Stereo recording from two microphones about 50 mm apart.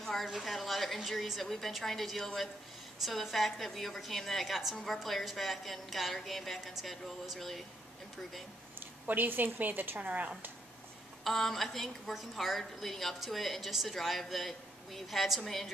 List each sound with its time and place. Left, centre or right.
0.0 s a woman's voice: centre
8.7 s a woman's voice: right
11.2 s a woman's voice: centre